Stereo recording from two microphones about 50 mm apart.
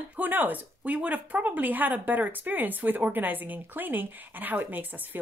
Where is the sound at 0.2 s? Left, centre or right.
Right.